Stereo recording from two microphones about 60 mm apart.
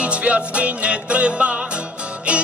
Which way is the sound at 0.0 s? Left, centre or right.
Right.